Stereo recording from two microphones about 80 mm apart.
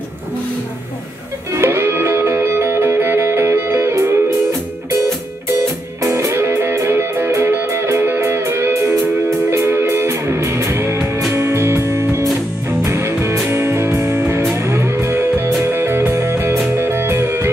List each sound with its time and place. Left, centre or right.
1.5 s music: right
6.0 s music: right